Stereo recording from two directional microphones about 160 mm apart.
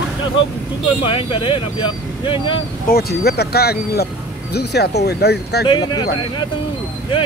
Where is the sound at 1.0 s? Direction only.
30° left (ahead or behind).